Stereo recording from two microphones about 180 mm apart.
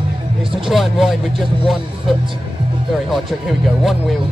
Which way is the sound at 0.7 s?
Centre (ahead or behind).